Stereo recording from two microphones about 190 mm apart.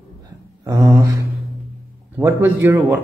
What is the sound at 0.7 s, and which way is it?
Speech, 15° right (ahead or behind).